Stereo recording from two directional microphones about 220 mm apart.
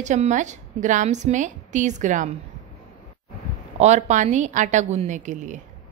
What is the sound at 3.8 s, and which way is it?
A woman's voice, 35° right (ahead or behind).